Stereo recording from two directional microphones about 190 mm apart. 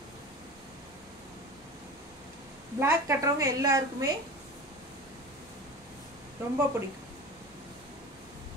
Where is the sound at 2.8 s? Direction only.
15° right (ahead or behind).